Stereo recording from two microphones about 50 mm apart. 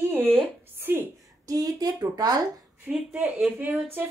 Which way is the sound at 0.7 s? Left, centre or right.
Right.